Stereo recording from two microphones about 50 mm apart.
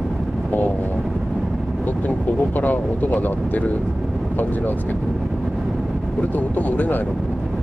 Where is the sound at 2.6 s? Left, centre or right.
Left.